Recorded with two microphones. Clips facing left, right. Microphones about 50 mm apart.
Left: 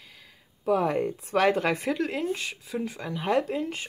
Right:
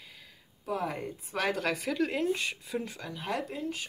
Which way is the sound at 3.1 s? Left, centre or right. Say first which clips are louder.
Left 9 dB; left.